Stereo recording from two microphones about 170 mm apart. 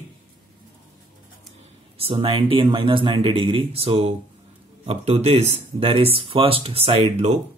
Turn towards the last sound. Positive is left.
turn(degrees=-40)  # may be behind; listen again after turning